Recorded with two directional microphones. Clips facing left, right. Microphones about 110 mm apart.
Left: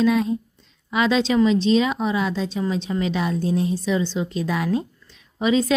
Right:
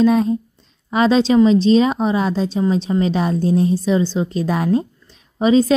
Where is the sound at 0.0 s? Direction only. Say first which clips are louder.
Right 5 dB; 40° right (ahead or behind).